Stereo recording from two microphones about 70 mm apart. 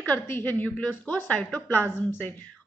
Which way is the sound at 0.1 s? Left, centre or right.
Left.